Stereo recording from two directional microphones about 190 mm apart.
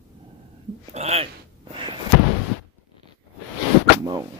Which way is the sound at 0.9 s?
35° right (ahead or behind).